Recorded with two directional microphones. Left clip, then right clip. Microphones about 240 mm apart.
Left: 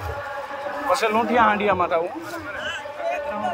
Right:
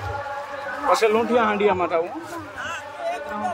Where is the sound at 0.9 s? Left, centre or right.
Centre.